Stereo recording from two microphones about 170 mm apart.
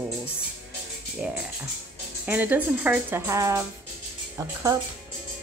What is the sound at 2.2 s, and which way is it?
Speech, 10° right (ahead or behind).